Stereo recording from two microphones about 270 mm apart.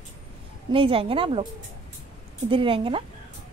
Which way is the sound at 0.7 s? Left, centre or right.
Centre.